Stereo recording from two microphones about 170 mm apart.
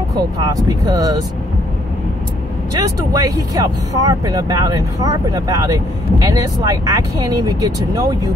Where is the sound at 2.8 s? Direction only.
20° right (ahead or behind).